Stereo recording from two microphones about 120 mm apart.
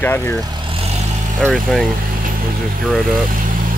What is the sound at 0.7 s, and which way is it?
Vehicle, 60° right (ahead or behind).